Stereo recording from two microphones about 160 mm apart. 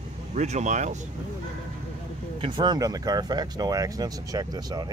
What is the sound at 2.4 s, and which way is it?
Speech, 25° right (ahead or behind).